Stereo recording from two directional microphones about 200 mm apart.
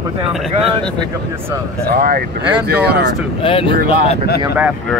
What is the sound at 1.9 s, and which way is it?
Speech, 45° right (ahead or behind).